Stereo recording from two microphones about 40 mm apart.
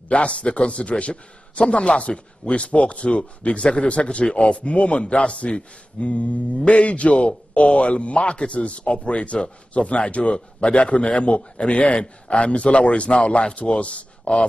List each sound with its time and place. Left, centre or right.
0.1 s a man's voice: left